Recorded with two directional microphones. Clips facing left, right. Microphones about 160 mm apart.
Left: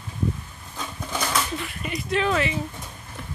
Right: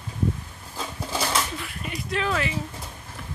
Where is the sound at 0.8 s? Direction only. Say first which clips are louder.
Right 1 dB; 30° right (ahead or behind).